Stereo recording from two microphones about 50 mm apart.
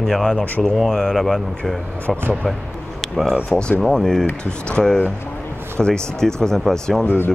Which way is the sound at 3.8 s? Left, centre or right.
Centre.